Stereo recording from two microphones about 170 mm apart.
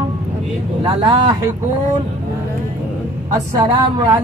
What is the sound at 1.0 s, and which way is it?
Speech, 25° right (ahead or behind).